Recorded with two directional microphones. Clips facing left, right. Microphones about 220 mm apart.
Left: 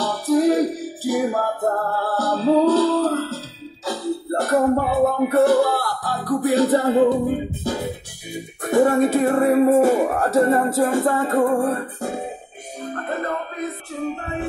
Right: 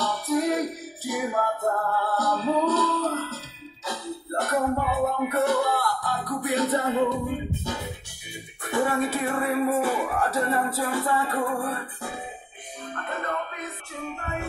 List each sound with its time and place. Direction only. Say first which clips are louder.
0.0 s music: left 7 dB; 30° left (ahead or behind)